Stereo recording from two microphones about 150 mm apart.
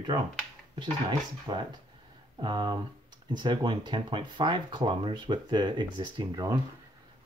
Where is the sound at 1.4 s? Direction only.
30° right (ahead or behind).